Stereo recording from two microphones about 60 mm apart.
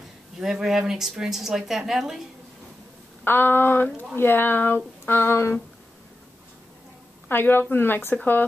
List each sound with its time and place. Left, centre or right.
0.4 s speech: centre
3.3 s speech: left
7.2 s a woman's voice: left